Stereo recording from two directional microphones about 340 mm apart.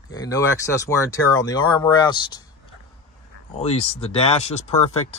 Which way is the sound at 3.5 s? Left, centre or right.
Centre.